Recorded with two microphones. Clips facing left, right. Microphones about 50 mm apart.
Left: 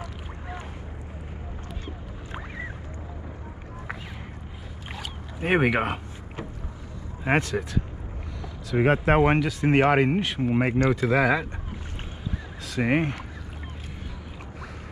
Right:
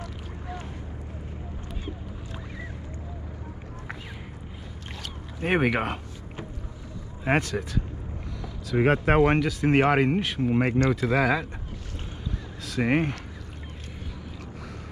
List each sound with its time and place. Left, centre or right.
2.3 s boat: left
4.9 s rowboat: centre
7.2 s speech: centre
12.6 s speech: centre